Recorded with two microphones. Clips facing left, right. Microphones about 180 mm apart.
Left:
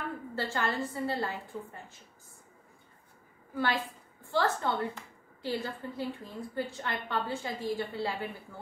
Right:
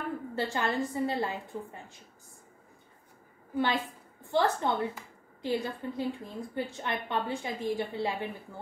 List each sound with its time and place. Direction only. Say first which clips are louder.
0.4 s a woman's voice: right 2 dB; 20° right (ahead or behind)
3.5 s a woman's voice: right 2 dB; 20° right (ahead or behind)